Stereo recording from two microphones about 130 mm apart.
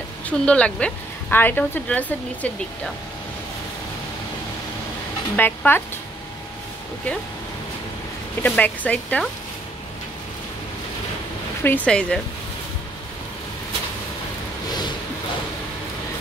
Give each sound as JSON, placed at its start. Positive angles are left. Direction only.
{"t": 0.3, "sound": "a woman's voice", "side_deg": 10}
{"t": 5.3, "sound": "a woman's voice", "side_deg": 15}
{"t": 8.4, "sound": "a woman's voice", "side_deg": 10}
{"t": 11.6, "sound": "a woman's voice", "side_deg": 10}